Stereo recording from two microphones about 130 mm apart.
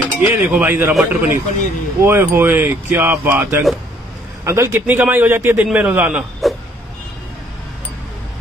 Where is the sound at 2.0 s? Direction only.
20° right (ahead or behind).